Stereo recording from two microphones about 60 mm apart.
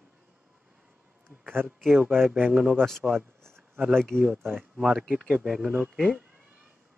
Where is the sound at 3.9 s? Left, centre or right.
Centre.